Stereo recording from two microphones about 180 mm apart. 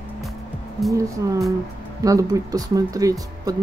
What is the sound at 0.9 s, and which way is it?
Speech, 20° right (ahead or behind).